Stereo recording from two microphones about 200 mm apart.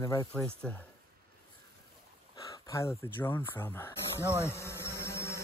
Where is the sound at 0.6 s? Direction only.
5° left (ahead or behind).